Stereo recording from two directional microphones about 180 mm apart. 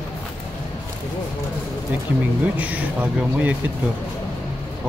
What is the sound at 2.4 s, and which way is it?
Speech, 10° right (ahead or behind).